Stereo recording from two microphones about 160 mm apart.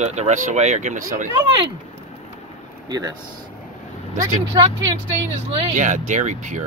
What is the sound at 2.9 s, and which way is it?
Speech, 25° right (ahead or behind).